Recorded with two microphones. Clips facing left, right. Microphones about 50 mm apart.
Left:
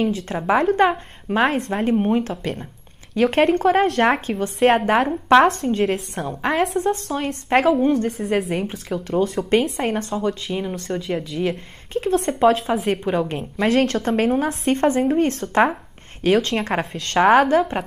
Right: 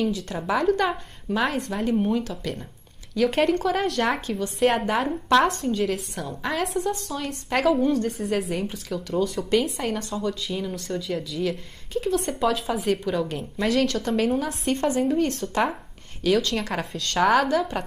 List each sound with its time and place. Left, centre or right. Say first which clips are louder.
0.0 s speech: left 4 dB; left